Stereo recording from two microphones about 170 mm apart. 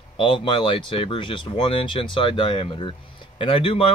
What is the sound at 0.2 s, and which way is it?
Speech, 30° left (ahead or behind).